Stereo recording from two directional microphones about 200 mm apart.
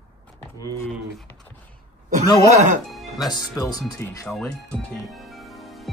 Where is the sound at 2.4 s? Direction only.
35° right (ahead or behind).